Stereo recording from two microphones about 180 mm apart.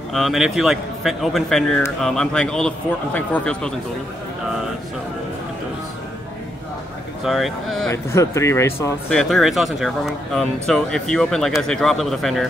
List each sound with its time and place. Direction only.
0.1 s speech: centre (ahead or behind)
7.2 s speech: centre (ahead or behind)
7.9 s speech: 15° left (ahead or behind)
9.1 s speech: centre (ahead or behind)